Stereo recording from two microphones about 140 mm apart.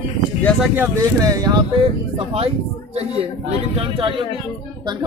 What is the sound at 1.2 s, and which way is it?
Speech, 25° right (ahead or behind).